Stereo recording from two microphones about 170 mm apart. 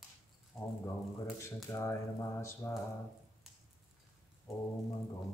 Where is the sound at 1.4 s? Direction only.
15° left (ahead or behind).